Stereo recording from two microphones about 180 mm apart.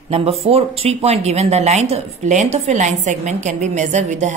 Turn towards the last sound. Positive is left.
turn(degrees=-40)  # may be behind; listen again after turning